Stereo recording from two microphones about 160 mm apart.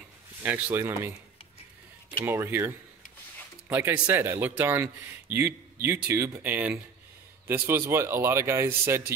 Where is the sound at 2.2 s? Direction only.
15° right (ahead or behind).